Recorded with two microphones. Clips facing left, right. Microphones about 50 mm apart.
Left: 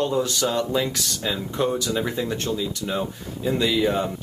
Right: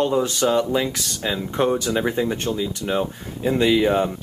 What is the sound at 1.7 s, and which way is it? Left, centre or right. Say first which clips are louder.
Speech: right 3 dB; right.